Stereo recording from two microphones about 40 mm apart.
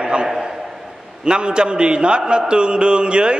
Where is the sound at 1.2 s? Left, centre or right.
Right.